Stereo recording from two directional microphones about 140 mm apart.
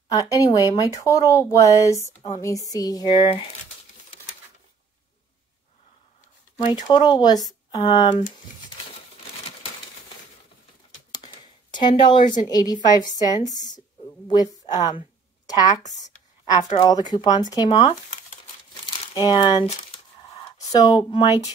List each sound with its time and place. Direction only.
0.1 s speech: 25° left (ahead or behind)
6.7 s speech: 30° left (ahead or behind)
12.0 s a woman's voice: 35° left (ahead or behind)
19.1 s speech: 35° left (ahead or behind)
20.7 s speech: 25° left (ahead or behind)